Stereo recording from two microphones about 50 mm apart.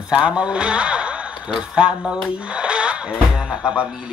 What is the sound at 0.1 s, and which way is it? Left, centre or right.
Speech, right.